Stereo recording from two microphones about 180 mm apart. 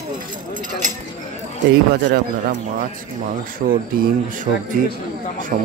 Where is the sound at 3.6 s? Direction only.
50° right (ahead or behind).